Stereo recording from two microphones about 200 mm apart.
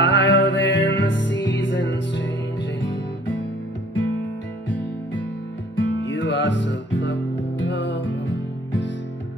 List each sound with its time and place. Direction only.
0.0 s music: 65° left (ahead or behind)
5.8 s music: 65° left (ahead or behind)